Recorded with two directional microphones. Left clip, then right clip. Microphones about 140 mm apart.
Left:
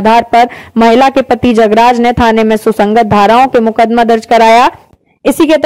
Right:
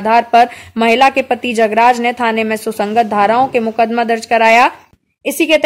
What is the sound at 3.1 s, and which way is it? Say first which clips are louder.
Speech: left 7 dB; 45° left (ahead or behind).